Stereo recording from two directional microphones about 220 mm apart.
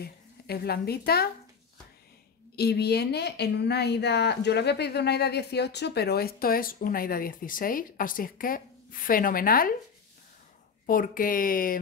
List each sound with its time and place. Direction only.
0.0 s speech: 45° left (ahead or behind)
2.5 s speech: 45° left (ahead or behind)
10.9 s speech: 40° left (ahead or behind)